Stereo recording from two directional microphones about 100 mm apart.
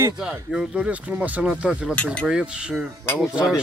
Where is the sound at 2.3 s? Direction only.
10° right (ahead or behind).